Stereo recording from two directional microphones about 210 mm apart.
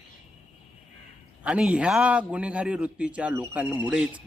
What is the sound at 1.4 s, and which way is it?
Speech, 5° right (ahead or behind).